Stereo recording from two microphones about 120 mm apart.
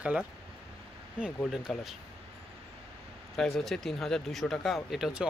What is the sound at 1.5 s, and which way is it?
Speech, 5° right (ahead or behind).